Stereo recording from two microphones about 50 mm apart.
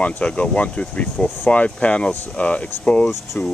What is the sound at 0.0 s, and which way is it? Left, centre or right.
Speech, left.